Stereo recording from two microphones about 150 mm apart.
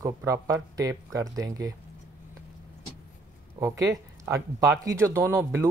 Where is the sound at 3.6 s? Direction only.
20° right (ahead or behind).